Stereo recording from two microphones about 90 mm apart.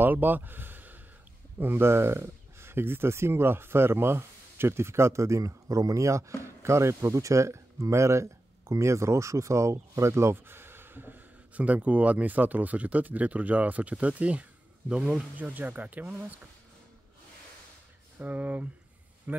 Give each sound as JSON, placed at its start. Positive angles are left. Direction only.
{"t": 0.0, "sound": "speech", "side_deg": -20}
{"t": 18.2, "sound": "a man's voice", "side_deg": -15}